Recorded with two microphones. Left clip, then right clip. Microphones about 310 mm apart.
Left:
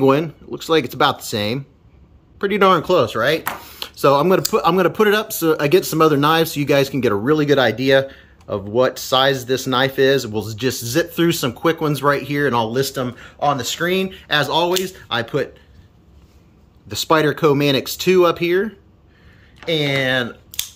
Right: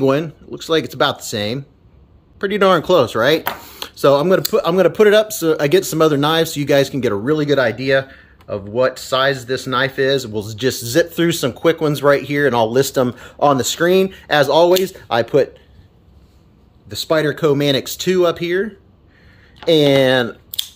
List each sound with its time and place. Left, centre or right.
0.0 s speech: centre
17.1 s speech: centre
19.6 s speech: right